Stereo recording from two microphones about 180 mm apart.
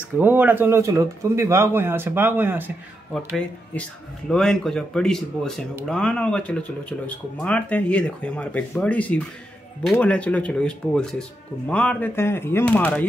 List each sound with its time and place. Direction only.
0.1 s speech: 10° right (ahead or behind)
4.3 s speech: centre (ahead or behind)